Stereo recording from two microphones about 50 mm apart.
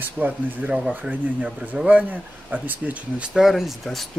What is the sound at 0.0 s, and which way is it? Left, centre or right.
Speech, right.